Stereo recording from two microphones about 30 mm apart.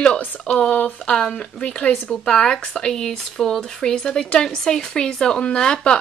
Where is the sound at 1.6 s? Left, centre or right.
Left.